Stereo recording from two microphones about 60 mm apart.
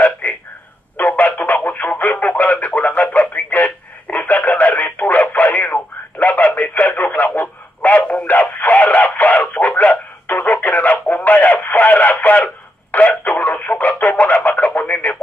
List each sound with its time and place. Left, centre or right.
0.2 s a sound: left
0.9 s telephone: left
8.1 s radio: left